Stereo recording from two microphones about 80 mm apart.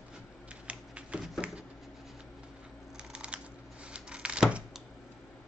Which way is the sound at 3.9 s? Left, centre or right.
Centre.